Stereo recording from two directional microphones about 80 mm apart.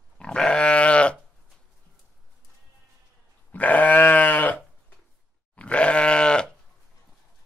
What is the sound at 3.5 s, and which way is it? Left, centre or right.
Goat, centre.